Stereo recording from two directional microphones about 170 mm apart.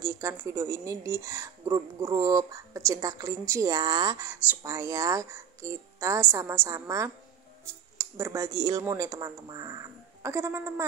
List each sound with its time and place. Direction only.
0.0 s speech: 15° right (ahead or behind)